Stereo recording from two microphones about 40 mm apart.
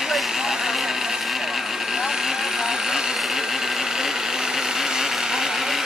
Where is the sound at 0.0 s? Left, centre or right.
Centre.